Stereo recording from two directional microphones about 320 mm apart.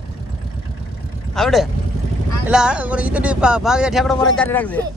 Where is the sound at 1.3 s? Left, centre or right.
Centre.